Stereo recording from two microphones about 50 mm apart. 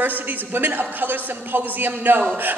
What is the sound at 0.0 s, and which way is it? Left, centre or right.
A woman's voice, right.